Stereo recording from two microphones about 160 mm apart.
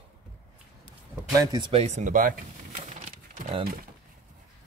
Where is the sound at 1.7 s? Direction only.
40° right (ahead or behind).